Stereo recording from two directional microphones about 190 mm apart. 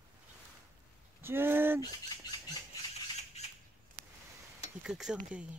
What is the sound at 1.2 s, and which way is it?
Speech, 10° right (ahead or behind).